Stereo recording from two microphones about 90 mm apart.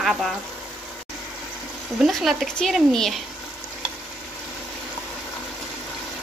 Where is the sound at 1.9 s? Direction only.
Centre (ahead or behind).